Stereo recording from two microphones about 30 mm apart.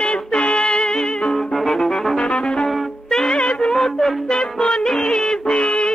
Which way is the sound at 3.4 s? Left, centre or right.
Left.